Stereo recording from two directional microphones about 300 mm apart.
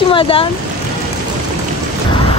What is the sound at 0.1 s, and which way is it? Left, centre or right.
Speech, centre.